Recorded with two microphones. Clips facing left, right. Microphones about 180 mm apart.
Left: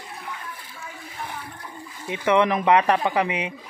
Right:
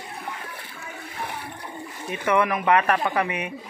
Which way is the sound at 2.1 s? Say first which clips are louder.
Left 2 dB; 20° left (ahead or behind).